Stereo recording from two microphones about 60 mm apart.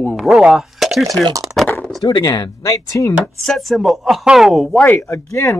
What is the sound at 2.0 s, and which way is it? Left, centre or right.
Speech, left.